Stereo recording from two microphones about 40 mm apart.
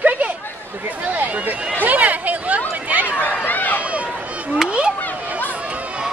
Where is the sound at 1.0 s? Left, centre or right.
Right.